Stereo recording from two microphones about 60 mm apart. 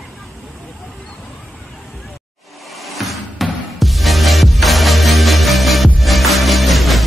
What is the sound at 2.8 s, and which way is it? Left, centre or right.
Music, centre.